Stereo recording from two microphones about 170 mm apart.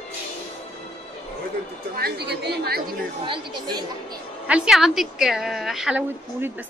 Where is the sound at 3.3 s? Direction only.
25° right (ahead or behind).